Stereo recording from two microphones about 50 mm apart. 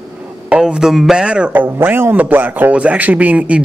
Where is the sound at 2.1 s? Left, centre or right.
Right.